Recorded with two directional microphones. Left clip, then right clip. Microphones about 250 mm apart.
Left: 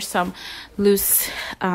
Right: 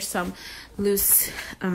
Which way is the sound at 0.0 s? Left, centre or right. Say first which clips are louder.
Left 6 dB; left.